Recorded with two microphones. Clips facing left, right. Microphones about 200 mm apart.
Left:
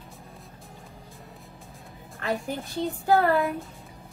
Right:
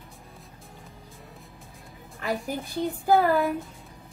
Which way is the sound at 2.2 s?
5° right (ahead or behind).